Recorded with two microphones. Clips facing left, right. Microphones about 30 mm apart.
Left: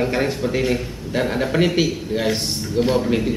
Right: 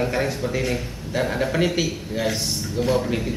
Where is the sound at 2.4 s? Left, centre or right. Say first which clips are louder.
Left 4 dB; left.